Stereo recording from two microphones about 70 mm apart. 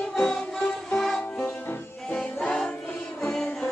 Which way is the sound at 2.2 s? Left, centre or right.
Centre.